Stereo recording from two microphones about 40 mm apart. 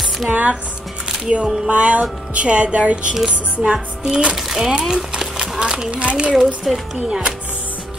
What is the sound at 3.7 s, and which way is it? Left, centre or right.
Speech, right.